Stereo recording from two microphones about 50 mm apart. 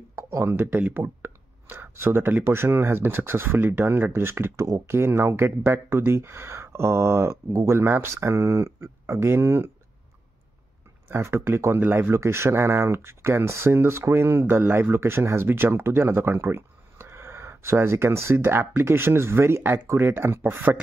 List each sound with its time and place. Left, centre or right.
0.1 s speech: right
0.8 s a sound: right
2.4 s speech: right
11.1 s speech: right
11.8 s speech: right
12.1 s speech: right